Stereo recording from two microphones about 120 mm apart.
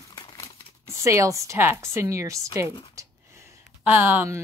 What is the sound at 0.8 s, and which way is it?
Speech, 25° right (ahead or behind).